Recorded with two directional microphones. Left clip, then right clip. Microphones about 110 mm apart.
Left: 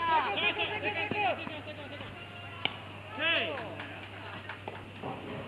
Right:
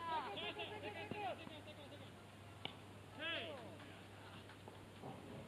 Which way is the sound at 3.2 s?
30° right (ahead or behind).